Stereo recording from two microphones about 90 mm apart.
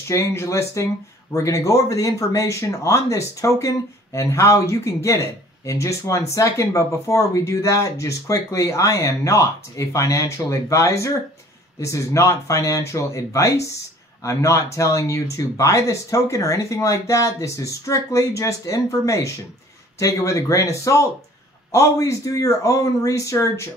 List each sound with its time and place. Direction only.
0.1 s speech: 30° left (ahead or behind)